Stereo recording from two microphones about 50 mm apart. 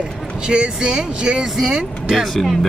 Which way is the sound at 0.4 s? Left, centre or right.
Centre.